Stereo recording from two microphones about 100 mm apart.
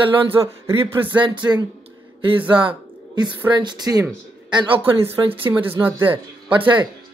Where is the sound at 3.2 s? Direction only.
45° right (ahead or behind).